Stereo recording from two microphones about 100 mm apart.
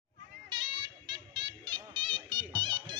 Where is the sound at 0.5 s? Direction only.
50° right (ahead or behind).